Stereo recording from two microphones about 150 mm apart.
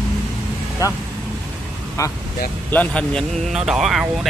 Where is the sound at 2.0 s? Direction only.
20° left (ahead or behind).